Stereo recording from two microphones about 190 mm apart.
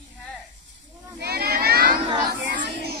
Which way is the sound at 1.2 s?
55° right (ahead or behind).